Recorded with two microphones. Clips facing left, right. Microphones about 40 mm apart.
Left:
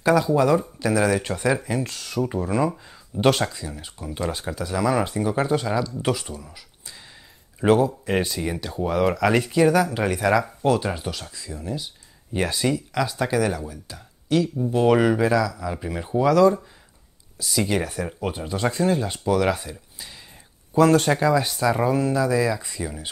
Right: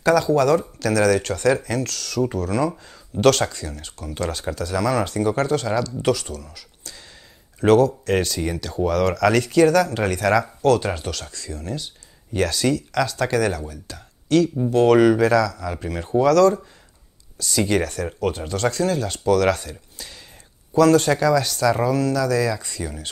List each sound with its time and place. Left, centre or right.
0.0 s speech: centre
6.3 s speech: left
20.7 s speech: left; by 23.0 s centre